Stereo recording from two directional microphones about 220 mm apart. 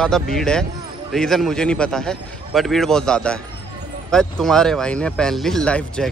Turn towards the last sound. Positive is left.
turn(degrees=5)  # may be behind; listen again after turning